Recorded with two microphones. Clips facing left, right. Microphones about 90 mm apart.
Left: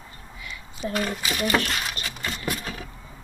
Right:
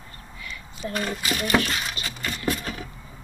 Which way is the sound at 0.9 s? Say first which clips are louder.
Even; 5° left (ahead or behind).